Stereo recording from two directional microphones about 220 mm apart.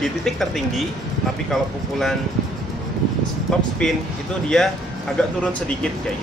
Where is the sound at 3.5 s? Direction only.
Centre (ahead or behind).